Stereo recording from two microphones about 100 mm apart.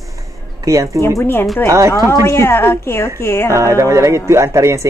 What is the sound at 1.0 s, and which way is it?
A woman's voice, 25° left (ahead or behind).